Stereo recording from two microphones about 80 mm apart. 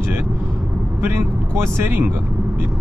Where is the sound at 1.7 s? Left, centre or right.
Right.